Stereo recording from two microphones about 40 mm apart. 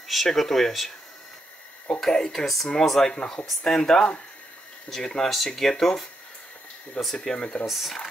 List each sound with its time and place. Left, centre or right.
0.1 s speech: centre
2.0 s speech: centre
3.1 s speech: left
7.2 s speech: left
7.6 s speech: centre